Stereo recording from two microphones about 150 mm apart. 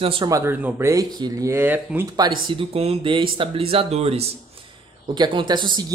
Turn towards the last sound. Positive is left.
turn(degrees=-30)  # may be behind; listen again after turning